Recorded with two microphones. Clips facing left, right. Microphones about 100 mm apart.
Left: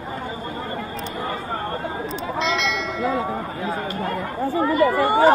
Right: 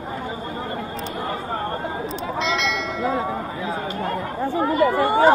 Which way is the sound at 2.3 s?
Centre (ahead or behind).